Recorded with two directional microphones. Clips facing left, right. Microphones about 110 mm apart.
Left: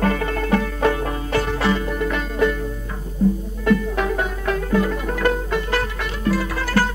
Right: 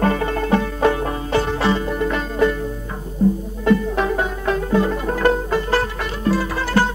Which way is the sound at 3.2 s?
40° right (ahead or behind).